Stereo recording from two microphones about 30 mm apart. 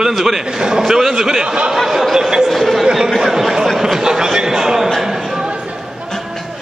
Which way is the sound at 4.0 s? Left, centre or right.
Centre.